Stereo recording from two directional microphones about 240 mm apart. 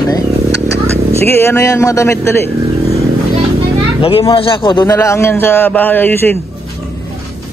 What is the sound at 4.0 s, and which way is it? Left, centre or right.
A man's voice, left.